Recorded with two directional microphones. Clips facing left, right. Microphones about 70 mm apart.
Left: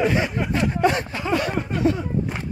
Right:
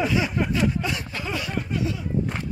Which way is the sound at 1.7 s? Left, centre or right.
Left.